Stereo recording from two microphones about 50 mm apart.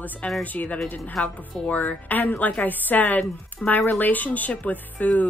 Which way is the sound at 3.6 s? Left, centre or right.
Centre.